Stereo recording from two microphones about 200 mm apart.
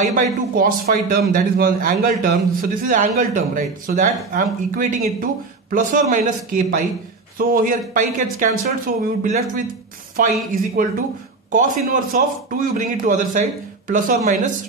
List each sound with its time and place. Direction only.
0.0 s speech: 40° right (ahead or behind)